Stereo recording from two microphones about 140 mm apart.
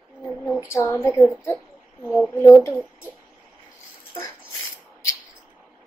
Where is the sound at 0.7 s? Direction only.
15° left (ahead or behind).